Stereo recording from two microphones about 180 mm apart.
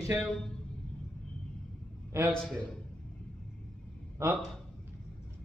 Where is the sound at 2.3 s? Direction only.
Centre (ahead or behind).